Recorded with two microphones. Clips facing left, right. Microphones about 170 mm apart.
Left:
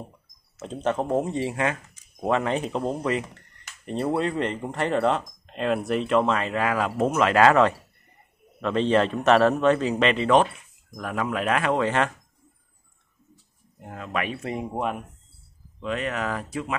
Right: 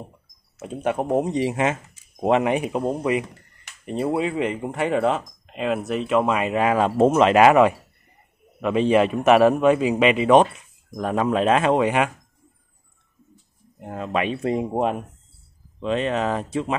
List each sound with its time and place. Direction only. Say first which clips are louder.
0.6 s speech: right 2 dB; 10° right (ahead or behind)
11.0 s speech: right 6 dB; 30° right (ahead or behind)
13.8 s speech: right 5 dB; 30° right (ahead or behind)